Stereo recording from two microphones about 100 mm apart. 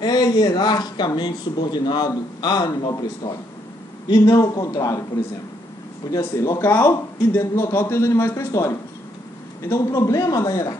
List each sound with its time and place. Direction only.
0.0 s a man's voice: 40° left (ahead or behind)
6.0 s a man's voice: 35° left (ahead or behind)